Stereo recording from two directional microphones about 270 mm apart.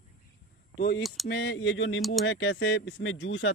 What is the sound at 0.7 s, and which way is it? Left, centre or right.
Speech, left.